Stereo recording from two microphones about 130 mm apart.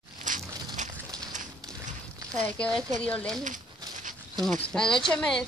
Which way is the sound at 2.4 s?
10° left (ahead or behind).